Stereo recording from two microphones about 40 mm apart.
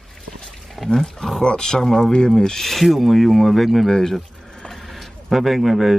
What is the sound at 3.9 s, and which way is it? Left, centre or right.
Speech, centre.